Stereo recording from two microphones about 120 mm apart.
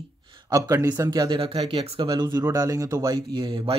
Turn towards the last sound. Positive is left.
turn(degrees=-45)  # may be behind; listen again after turning